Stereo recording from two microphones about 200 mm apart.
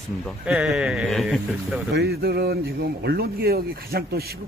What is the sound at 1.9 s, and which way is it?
Speech, 55° right (ahead or behind).